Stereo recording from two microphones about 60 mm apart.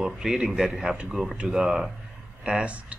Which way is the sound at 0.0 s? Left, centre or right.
Centre.